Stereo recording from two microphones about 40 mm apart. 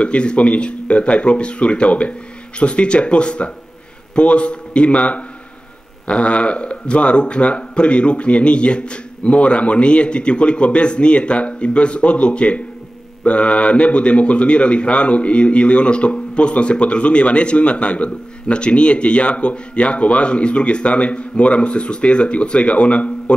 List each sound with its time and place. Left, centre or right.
0.0 s a man's voice: left